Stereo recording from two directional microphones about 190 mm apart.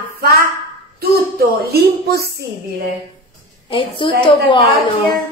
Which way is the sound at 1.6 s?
55° right (ahead or behind).